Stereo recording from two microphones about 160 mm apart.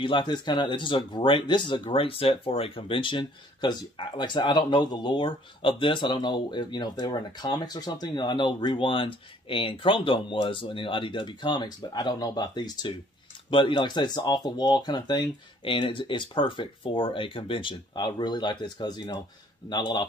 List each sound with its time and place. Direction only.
0.0 s speech: 30° left (ahead or behind)